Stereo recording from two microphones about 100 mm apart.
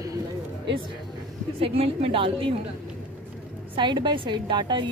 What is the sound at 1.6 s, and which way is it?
Speech, 70° right (ahead or behind).